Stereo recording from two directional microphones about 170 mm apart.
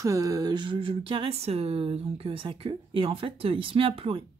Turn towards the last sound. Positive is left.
turn(degrees=-30)  # may be behind; listen again after turning